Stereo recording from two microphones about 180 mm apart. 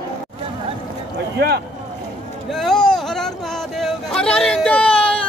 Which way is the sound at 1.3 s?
65° right (ahead or behind).